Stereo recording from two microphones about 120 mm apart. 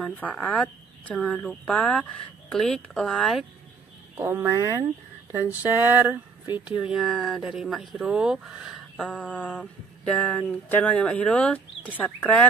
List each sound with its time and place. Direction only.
0.0 s speech: 10° left (ahead or behind)
4.2 s speech: 20° right (ahead or behind)
4.6 s speech: 35° right (ahead or behind)
5.6 s speech: 15° right (ahead or behind)
9.1 s speech: 10° left (ahead or behind)